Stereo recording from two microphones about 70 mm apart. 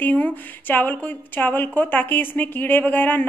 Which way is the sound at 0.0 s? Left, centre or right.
Left.